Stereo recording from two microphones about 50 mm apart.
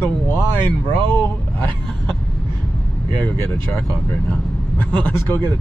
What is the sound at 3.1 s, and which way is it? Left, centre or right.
Vehicle, left.